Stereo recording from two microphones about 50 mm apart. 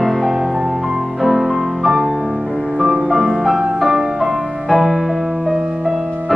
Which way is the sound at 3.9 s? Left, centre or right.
Centre.